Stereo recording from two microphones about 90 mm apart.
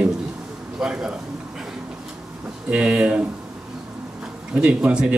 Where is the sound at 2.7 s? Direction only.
15° right (ahead or behind).